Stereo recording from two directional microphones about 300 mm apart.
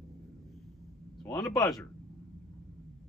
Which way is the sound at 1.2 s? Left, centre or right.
Centre.